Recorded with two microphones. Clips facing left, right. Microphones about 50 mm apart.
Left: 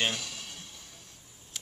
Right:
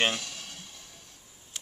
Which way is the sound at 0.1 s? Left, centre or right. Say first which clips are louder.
Right 2 dB; centre.